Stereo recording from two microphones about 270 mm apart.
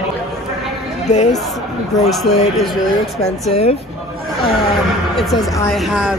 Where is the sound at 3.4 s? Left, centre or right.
Left.